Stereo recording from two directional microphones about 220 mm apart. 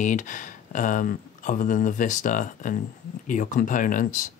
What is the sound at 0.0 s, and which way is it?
Speech, 35° left (ahead or behind).